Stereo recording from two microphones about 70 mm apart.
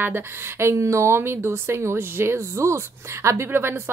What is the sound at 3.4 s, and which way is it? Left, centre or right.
Speech, right.